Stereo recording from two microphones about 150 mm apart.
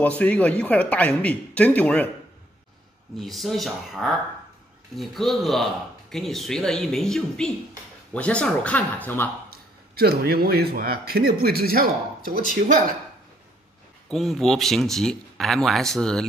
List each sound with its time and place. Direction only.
0.0 s speech: 10° left (ahead or behind)
3.2 s speech: centre (ahead or behind)
9.5 s a man's voice: 90° right
14.1 s speech: centre (ahead or behind)